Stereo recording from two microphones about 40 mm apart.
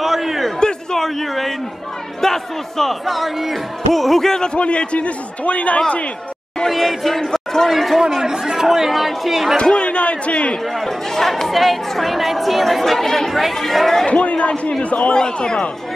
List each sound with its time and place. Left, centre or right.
0.0 s a sound: centre
0.9 s a man's voice: centre
4.6 s a man's voice: left
6.7 s speech: centre
7.2 s a man's voice: centre
7.7 s speech: centre
8.2 s speech: centre
9.6 s a man's voice: left
10.8 s speech: centre
14.0 s a man's voice: left
15.1 s speech: centre